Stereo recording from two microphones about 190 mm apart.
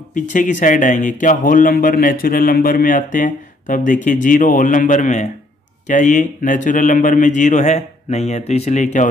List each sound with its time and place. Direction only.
0.1 s a man's voice: 40° left (ahead or behind)